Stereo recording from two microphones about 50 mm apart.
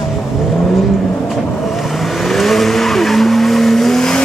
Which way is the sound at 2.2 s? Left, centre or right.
Centre.